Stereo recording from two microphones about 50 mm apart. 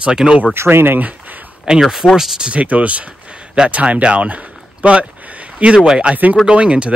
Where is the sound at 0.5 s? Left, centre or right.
Right.